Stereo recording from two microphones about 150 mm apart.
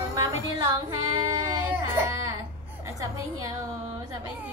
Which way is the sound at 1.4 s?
15° right (ahead or behind).